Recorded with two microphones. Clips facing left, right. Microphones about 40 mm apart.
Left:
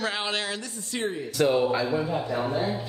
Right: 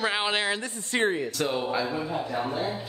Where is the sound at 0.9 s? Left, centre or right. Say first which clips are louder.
Right 5 dB; right.